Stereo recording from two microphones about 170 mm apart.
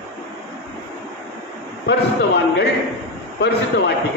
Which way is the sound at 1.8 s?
75° left (ahead or behind).